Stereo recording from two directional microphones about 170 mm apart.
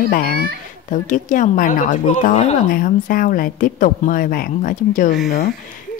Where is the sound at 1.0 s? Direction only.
50° left (ahead or behind).